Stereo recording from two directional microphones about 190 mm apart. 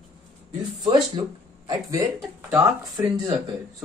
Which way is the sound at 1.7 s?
20° right (ahead or behind).